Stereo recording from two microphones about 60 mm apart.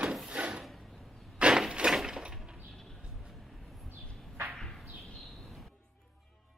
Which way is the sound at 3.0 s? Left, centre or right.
Centre.